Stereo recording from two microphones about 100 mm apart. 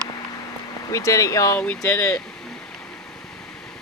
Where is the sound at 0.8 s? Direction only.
35° left (ahead or behind).